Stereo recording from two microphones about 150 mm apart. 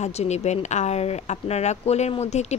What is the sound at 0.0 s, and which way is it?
A woman's voice, 45° left (ahead or behind).